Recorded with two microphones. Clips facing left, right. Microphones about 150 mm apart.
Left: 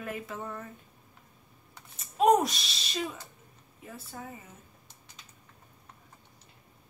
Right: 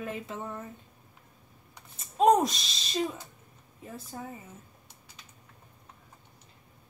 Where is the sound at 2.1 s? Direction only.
30° right (ahead or behind).